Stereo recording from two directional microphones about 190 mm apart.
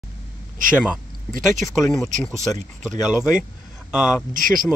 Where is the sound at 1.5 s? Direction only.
Centre (ahead or behind).